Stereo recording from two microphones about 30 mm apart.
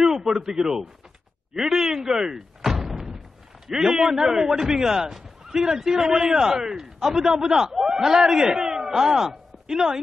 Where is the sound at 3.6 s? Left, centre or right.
Centre.